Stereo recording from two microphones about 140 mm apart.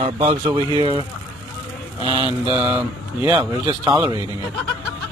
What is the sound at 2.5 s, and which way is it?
Speech, 10° right (ahead or behind).